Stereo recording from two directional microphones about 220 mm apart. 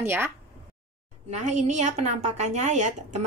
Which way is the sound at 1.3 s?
30° right (ahead or behind).